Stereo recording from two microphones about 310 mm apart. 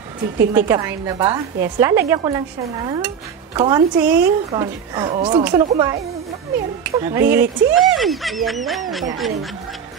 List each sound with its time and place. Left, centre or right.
0.5 s a woman's voice: centre